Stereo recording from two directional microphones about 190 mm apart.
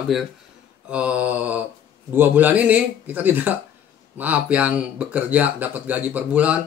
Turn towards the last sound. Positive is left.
turn(degrees=-5)  # may be behind; listen again after turning